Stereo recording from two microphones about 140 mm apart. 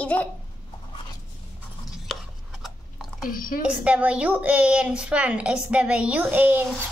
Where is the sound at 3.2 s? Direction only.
85° left.